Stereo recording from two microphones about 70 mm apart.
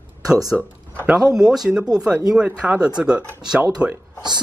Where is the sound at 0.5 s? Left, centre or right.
Centre.